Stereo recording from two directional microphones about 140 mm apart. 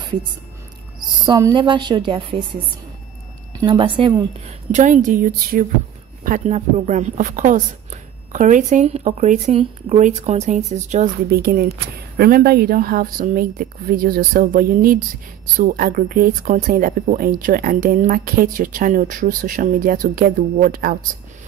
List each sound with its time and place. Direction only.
1.0 s a sound: 35° right (ahead or behind)
1.5 s a woman's voice: 35° right (ahead or behind)
3.6 s a woman's voice: 35° right (ahead or behind)
4.7 s speech: 60° right (ahead or behind); by 5.7 s 80° right
6.2 s a woman's voice: 60° right (ahead or behind); by 21.0 s 85° right